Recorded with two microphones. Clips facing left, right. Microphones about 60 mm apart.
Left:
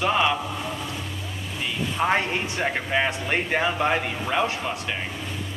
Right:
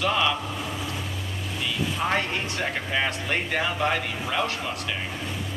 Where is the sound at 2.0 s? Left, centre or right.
Centre.